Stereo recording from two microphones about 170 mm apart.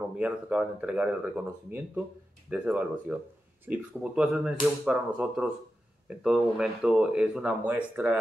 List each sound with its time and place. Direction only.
0.1 s speech: 5° right (ahead or behind)